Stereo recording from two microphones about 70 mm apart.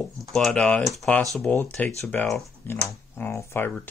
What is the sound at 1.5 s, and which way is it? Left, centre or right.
Speech, left.